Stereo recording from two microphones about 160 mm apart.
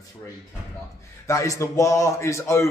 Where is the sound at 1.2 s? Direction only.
20° left (ahead or behind).